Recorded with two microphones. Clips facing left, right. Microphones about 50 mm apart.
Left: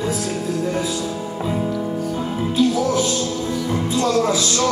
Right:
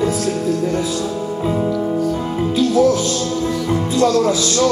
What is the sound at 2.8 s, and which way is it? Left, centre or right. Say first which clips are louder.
Music: right 4 dB; left.